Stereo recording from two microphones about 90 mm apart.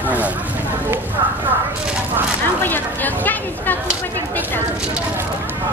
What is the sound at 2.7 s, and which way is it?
Speech, 20° left (ahead or behind).